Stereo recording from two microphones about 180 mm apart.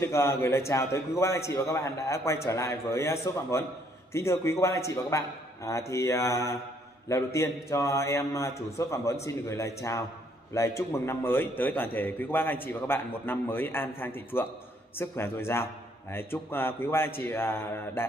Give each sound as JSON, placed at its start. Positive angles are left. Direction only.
{"t": 0.0, "sound": "a man's voice", "side_deg": 15}